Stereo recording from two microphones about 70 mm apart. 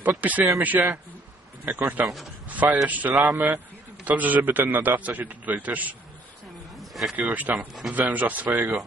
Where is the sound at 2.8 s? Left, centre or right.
Right.